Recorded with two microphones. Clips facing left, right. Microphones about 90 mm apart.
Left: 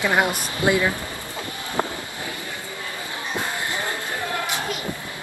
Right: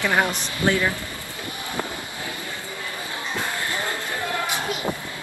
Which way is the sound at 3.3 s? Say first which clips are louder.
Left 1 dB; 20° left (ahead or behind).